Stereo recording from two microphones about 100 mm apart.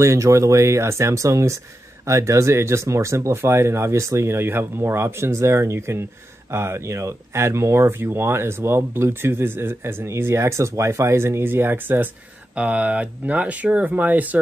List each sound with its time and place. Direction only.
0.0 s speech: 30° right (ahead or behind)